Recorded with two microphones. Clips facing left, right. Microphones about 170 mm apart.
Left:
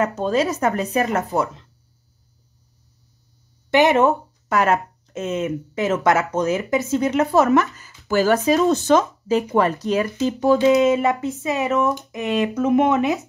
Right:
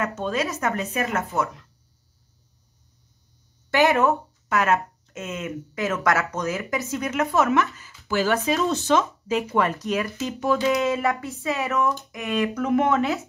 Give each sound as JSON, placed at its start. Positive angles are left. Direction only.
{"t": 0.0, "sound": "speech", "side_deg": 35}
{"t": 3.7, "sound": "speech", "side_deg": 20}
{"t": 4.1, "sound": "speech", "side_deg": 35}
{"t": 5.4, "sound": "speech", "side_deg": 20}